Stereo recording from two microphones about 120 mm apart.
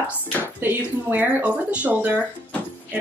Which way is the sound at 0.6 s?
15° right (ahead or behind).